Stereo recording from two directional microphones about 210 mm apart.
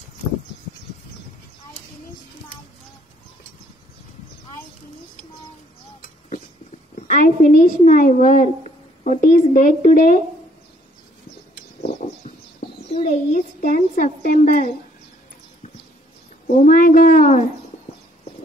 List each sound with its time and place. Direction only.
7.0 s a woman's voice: 35° left (ahead or behind)
11.8 s a sound: 30° left (ahead or behind)
13.9 s speech: 40° left (ahead or behind)
16.5 s speech: 40° left (ahead or behind)